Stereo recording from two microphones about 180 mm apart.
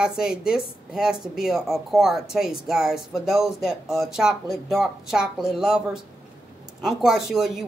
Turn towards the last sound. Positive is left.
turn(degrees=0)  # may be behind; listen again after turning